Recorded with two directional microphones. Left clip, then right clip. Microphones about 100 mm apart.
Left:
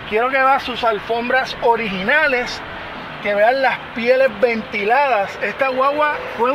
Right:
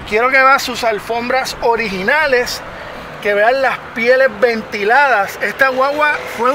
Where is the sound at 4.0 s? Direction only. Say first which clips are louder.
Right 3 dB; 45° right (ahead or behind).